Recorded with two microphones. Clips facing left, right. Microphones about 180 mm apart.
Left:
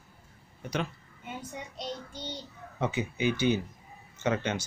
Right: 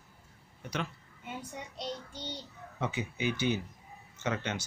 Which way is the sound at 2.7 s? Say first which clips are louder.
Left 4 dB; 25° left (ahead or behind).